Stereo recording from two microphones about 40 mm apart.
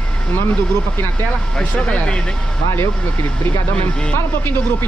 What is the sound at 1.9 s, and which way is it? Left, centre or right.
Speech, left.